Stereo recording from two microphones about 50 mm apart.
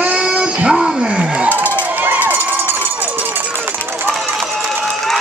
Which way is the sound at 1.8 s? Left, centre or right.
Right.